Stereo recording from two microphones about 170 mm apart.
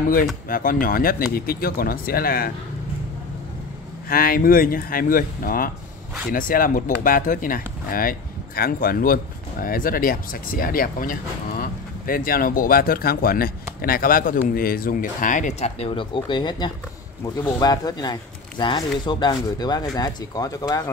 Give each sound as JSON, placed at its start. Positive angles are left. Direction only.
{"t": 0.5, "sound": "speech", "side_deg": 55}
{"t": 4.1, "sound": "speech", "side_deg": 60}